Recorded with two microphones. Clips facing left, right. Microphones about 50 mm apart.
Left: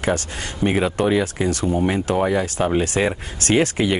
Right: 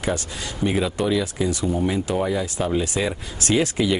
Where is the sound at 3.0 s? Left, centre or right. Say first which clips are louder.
Left 4 dB; left.